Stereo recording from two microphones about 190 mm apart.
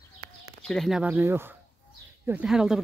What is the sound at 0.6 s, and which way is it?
Speech, centre (ahead or behind).